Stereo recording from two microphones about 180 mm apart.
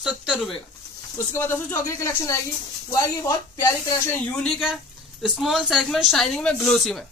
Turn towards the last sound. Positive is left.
turn(degrees=0)  # may be behind; listen again after turning